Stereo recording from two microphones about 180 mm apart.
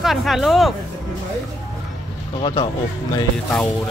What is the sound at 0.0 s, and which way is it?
Speech, centre (ahead or behind).